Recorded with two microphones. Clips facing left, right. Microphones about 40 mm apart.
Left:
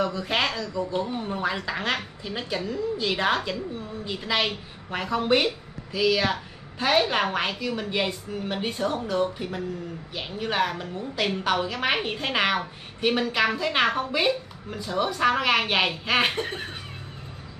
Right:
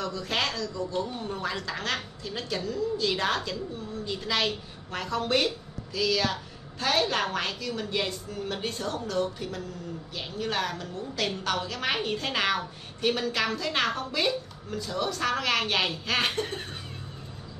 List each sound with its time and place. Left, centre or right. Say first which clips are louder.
0.0 s a woman's voice: left 4 dB; centre